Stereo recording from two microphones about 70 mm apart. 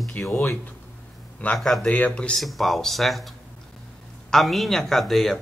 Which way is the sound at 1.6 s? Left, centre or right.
Centre.